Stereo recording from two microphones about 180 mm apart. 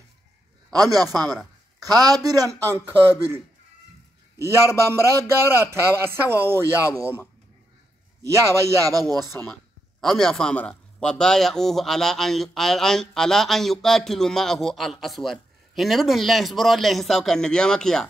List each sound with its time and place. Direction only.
0.7 s a man's voice: 20° right (ahead or behind)
4.4 s a man's voice: 15° right (ahead or behind)
9.5 s speech: centre (ahead or behind)